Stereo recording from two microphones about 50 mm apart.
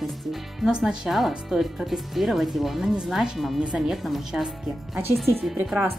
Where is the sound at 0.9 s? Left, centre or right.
Centre.